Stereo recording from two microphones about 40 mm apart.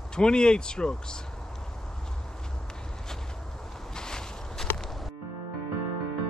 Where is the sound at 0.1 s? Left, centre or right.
Left.